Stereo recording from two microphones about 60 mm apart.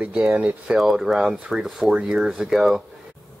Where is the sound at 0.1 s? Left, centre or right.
Centre.